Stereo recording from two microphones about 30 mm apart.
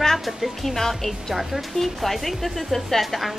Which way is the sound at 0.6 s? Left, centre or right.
Centre.